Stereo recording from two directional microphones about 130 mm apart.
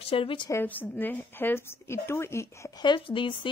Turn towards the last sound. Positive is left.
turn(degrees=40)  # may be behind; listen again after turning